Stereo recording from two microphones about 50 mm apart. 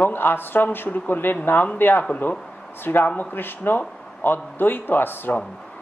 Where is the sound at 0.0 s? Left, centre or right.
Left.